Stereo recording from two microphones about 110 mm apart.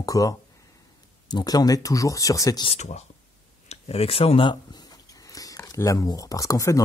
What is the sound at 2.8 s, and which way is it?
Speech, 90° left.